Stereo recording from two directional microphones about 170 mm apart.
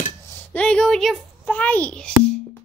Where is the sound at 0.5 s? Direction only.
5° left (ahead or behind).